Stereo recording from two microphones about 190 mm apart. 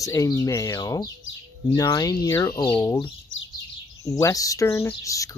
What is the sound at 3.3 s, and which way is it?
Bird, 90° left.